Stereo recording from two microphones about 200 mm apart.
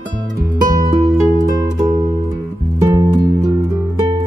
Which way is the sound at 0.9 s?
20° right (ahead or behind).